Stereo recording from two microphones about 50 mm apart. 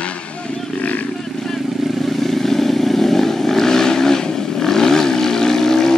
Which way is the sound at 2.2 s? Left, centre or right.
Centre.